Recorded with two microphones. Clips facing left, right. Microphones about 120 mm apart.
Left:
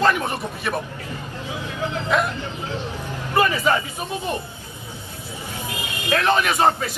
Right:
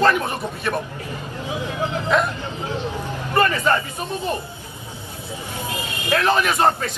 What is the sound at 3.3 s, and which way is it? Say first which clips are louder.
Speech: even; 5° left (ahead or behind).